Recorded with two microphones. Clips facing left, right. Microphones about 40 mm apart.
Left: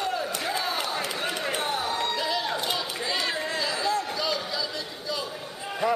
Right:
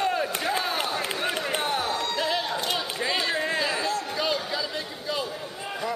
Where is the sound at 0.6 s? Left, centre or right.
Centre.